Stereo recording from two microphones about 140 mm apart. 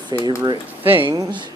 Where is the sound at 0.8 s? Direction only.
15° right (ahead or behind).